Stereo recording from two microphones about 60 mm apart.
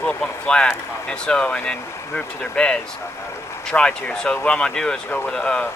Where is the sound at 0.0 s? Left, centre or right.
Left.